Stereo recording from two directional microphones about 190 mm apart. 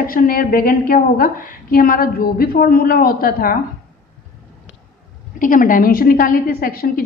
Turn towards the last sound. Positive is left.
turn(degrees=50)  # may be behind; listen again after turning